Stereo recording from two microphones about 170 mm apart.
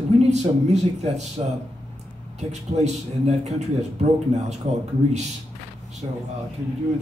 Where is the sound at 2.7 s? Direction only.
40° right (ahead or behind).